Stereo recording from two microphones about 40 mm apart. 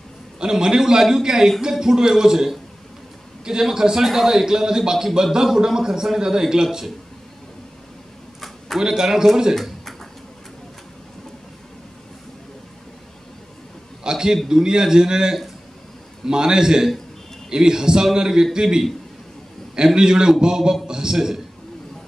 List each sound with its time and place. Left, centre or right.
0.4 s a man's voice: centre
8.7 s a man's voice: centre
14.0 s a man's voice: centre
19.9 s a man's voice: centre